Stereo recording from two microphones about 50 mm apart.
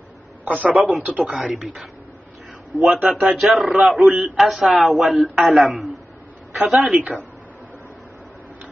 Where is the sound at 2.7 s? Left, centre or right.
Centre.